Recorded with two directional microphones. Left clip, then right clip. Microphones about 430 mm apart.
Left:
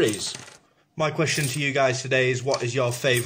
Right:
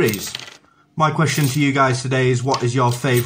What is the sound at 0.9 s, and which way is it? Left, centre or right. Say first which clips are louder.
Speech: right 6 dB; centre.